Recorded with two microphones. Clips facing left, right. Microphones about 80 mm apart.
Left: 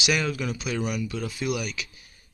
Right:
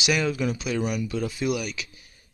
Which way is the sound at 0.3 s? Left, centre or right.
Centre.